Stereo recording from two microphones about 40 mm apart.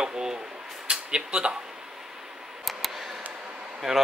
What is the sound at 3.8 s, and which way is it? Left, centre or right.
Speech, centre.